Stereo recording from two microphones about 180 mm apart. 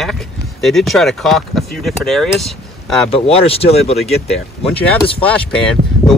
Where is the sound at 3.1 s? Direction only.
35° left (ahead or behind).